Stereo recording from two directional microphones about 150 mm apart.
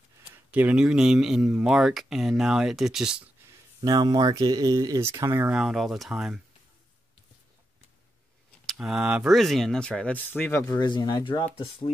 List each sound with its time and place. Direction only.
0.5 s speech: 10° right (ahead or behind)
3.8 s speech: 25° right (ahead or behind); by 6.4 s 5° right (ahead or behind)
8.6 s speech: 5° right (ahead or behind); by 10.6 s 15° left (ahead or behind)
10.7 s speech: 30° left (ahead or behind)